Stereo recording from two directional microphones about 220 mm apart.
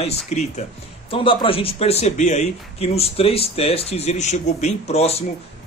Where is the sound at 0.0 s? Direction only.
30° left (ahead or behind).